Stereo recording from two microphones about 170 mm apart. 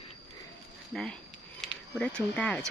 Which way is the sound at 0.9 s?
Centre (ahead or behind).